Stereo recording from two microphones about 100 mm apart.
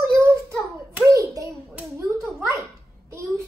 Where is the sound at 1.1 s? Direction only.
30° right (ahead or behind).